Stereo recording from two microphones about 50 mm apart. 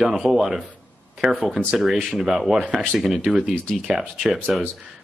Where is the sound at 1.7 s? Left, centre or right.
Centre.